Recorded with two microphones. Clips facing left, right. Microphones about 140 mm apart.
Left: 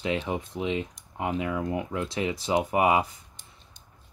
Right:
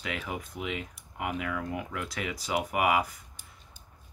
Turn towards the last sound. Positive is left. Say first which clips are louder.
# left 4 dB
turn(degrees=25)  # may be behind; listen again after turning